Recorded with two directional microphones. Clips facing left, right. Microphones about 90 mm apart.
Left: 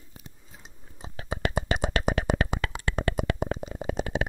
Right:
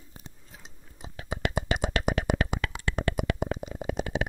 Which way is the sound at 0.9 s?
30° left (ahead or behind).